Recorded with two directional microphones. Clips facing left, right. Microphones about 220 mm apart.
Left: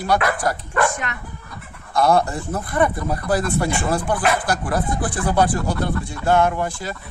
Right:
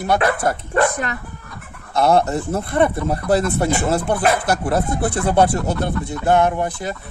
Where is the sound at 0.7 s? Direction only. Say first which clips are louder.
Right 4 dB; 35° right (ahead or behind).